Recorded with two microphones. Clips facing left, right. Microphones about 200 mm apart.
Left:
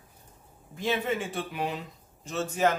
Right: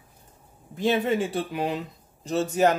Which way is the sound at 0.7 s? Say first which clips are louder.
Right 6 dB; 35° right (ahead or behind).